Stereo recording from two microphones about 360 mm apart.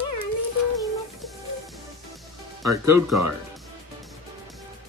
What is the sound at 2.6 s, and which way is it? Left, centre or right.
Speech, centre.